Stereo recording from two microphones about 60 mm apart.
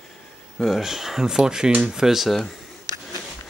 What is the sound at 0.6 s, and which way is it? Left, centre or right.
Speech, centre.